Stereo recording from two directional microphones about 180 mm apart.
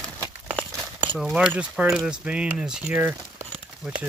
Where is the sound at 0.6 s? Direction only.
Centre (ahead or behind).